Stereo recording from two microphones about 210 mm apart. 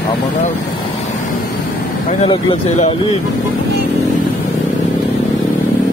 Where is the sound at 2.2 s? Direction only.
25° left (ahead or behind).